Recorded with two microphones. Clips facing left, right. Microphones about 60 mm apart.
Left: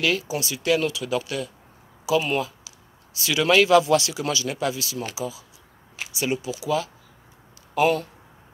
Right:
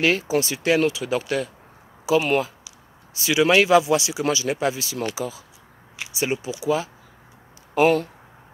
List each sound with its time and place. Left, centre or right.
0.0 s speech: right
3.2 s speech: right
5.1 s speech: right
6.1 s speech: right